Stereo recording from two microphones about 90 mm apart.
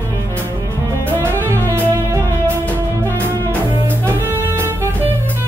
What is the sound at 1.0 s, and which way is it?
Music, 25° right (ahead or behind).